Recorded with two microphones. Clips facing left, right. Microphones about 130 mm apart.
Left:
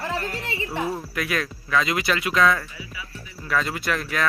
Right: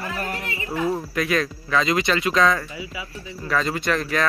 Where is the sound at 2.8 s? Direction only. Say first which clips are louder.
Right 5 dB; 20° right (ahead or behind).